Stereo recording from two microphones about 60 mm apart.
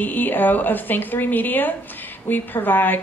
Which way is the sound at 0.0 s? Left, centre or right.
Left.